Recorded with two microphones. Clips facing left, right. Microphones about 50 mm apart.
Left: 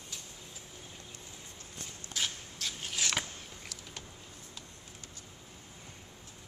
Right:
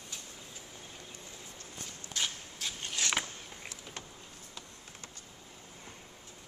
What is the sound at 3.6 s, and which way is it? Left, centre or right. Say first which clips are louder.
Power windows: right 2 dB; centre.